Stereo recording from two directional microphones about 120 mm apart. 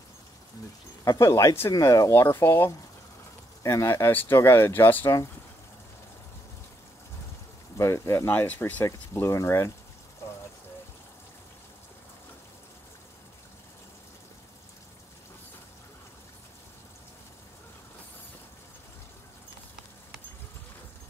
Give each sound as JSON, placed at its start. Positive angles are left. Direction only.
{"t": 1.0, "sound": "speech", "side_deg": 30}
{"t": 7.7, "sound": "speech", "side_deg": 25}